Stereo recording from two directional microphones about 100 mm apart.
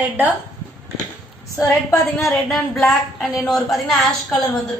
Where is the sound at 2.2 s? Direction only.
Centre (ahead or behind).